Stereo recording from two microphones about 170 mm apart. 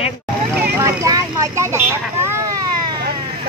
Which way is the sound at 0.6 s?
15° right (ahead or behind).